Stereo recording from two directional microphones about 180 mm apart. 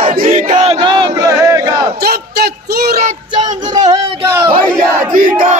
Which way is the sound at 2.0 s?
60° right (ahead or behind).